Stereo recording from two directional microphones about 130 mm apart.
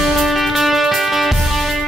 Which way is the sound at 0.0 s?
Centre (ahead or behind).